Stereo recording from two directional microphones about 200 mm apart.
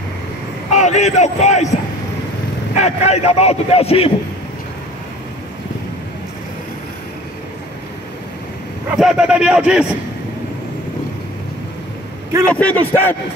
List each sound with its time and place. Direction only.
0.7 s a man's voice: 35° left (ahead or behind)
2.8 s a man's voice: 30° left (ahead or behind)
8.9 s a man's voice: 5° right (ahead or behind)
12.4 s a man's voice: 5° left (ahead or behind)